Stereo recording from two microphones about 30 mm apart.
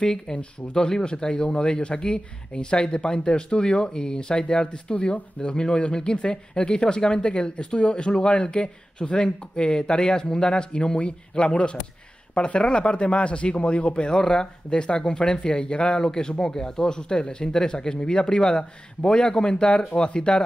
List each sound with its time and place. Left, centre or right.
0.0 s speech: left
14.1 s speech: left
16.0 s speech: left